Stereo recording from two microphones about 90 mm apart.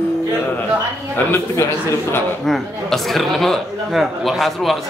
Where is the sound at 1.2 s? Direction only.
30° left (ahead or behind).